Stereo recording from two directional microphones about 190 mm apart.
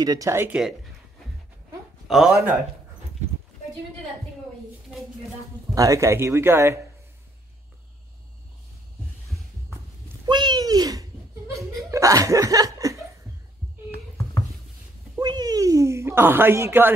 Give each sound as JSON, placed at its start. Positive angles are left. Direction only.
{"t": 0.0, "sound": "speech", "side_deg": -20}
{"t": 2.0, "sound": "speech", "side_deg": 0}
{"t": 5.8, "sound": "speech", "side_deg": -15}
{"t": 10.2, "sound": "a sound", "side_deg": -25}
{"t": 11.9, "sound": "laughter", "side_deg": -15}
{"t": 15.1, "sound": "a sound", "side_deg": -20}